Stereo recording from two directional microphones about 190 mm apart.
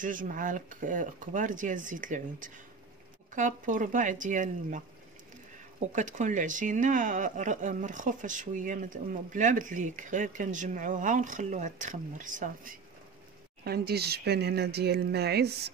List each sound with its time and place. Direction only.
0.0 s speech: 45° right (ahead or behind)
5.9 s speech: 40° right (ahead or behind)
13.7 s speech: 60° right (ahead or behind)